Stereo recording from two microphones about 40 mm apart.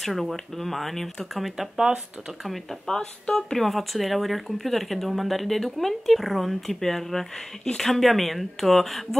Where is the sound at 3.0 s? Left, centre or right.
Left.